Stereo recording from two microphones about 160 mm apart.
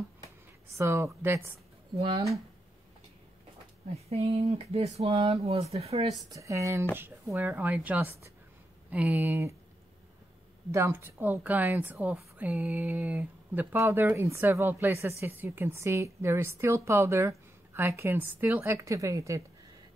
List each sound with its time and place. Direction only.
0.7 s a woman's voice: 15° right (ahead or behind)
3.9 s speech: 40° right (ahead or behind)
6.3 s a woman's voice: 20° right (ahead or behind)
10.7 s a woman's voice: 15° right (ahead or behind)